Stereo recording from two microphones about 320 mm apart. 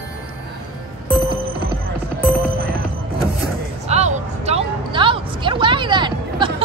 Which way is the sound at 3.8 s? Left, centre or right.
Right.